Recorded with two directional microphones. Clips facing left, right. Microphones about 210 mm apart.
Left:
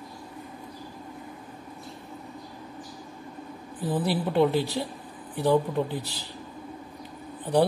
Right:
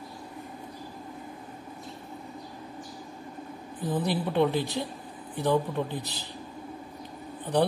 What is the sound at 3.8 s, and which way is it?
Speech, 10° left (ahead or behind).